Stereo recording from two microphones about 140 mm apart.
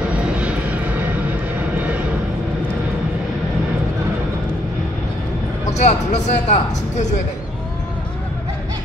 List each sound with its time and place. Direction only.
0.4 s vehicle: 10° right (ahead or behind)
5.7 s speech: 55° left (ahead or behind)